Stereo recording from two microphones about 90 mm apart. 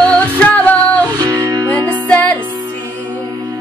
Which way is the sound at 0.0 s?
20° left (ahead or behind).